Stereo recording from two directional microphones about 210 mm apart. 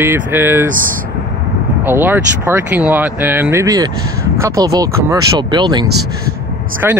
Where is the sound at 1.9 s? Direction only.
10° right (ahead or behind).